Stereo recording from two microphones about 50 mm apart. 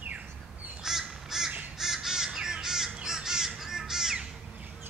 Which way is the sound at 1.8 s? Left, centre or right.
Centre.